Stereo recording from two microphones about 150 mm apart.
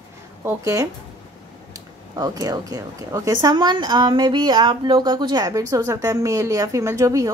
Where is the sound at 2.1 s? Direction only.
25° right (ahead or behind).